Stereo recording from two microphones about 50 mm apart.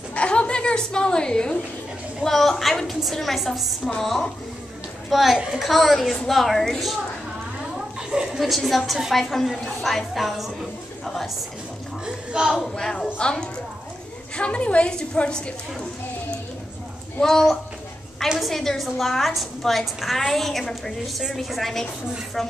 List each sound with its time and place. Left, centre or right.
0.1 s speech: left
2.2 s a woman's voice: centre
5.1 s a woman's voice: centre
7.7 s a sound: centre
8.4 s a woman's voice: centre
12.3 s a woman's voice: centre
13.0 s a woman's voice: centre
17.2 s a woman's voice: centre